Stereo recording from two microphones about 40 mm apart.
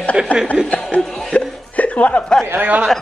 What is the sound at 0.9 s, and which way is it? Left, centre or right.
Speech, left.